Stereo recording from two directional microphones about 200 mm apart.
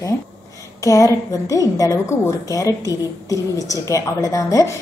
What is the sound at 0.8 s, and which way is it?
A woman's voice, 15° left (ahead or behind).